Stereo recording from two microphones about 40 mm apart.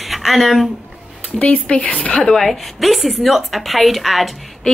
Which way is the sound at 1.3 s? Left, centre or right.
Left.